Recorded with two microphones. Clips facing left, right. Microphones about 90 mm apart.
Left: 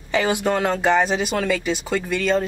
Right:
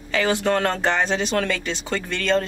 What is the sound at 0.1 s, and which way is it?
Speech, 15° left (ahead or behind).